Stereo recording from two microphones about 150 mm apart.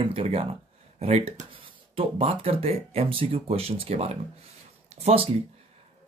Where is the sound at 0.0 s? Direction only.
40° right (ahead or behind).